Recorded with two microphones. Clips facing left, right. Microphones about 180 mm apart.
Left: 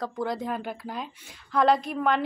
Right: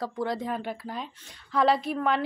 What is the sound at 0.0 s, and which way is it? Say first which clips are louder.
A woman's voice: even; centre (ahead or behind).